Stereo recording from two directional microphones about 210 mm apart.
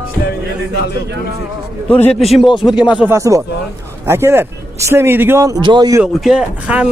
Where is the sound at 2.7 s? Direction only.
5° right (ahead or behind).